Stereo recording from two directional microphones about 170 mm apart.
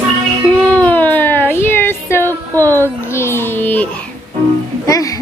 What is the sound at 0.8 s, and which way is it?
Music, 10° left (ahead or behind).